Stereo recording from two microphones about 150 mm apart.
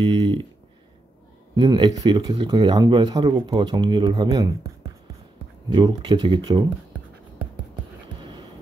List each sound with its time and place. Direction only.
0.0 s speech: 30° right (ahead or behind)
1.5 s speech: 30° right (ahead or behind)
5.7 s speech: 30° right (ahead or behind)
8.2 s a sound: 30° right (ahead or behind)